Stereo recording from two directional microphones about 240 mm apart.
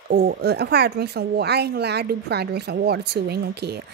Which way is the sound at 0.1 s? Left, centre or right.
Right.